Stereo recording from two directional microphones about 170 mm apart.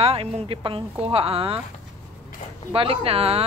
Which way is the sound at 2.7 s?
35° right (ahead or behind).